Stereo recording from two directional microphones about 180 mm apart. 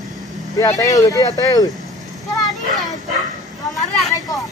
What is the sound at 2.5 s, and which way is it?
Speech, centre (ahead or behind).